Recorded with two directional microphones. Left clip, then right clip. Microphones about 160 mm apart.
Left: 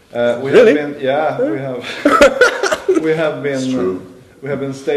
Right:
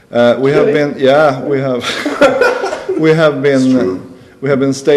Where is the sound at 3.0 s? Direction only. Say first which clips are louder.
Right 7 dB; 40° right (ahead or behind).